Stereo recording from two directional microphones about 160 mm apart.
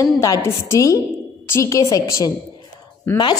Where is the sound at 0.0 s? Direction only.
20° left (ahead or behind).